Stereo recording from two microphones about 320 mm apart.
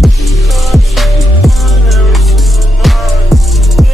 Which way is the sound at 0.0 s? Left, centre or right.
Centre.